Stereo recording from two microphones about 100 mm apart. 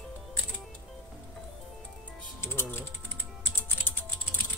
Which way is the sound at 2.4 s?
25° left (ahead or behind).